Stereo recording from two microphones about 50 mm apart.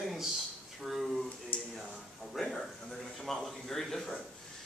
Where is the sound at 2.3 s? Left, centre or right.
Centre.